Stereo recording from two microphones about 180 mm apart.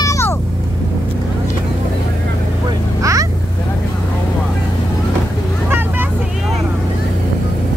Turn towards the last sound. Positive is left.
turn(degrees=-10)  # may be behind; listen again after turning